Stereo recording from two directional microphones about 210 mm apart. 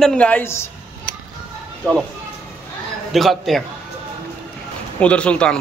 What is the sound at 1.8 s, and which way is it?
Speech, 5° left (ahead or behind).